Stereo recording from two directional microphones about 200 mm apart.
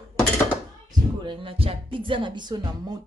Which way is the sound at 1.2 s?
25° right (ahead or behind).